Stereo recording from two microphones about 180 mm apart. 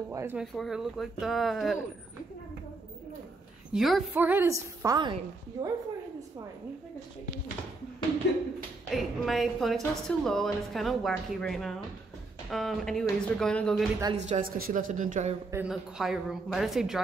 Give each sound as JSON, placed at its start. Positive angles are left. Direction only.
{"t": 0.1, "sound": "a woman's voice", "side_deg": -10}
{"t": 0.6, "sound": "speech", "side_deg": 0}
{"t": 3.7, "sound": "a woman's voice", "side_deg": 0}
{"t": 8.2, "sound": "speech", "side_deg": 80}
{"t": 8.9, "sound": "speech", "side_deg": 0}
{"t": 14.1, "sound": "speech", "side_deg": -45}
{"t": 15.5, "sound": "speech", "side_deg": -5}